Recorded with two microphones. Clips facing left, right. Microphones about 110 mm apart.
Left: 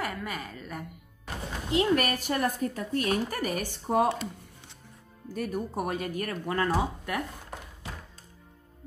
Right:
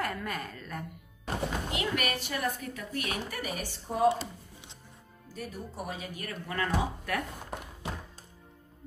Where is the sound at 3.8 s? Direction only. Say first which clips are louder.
Left 1 dB; 80° left.